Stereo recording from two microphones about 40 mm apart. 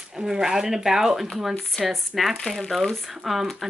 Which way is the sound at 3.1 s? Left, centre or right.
Centre.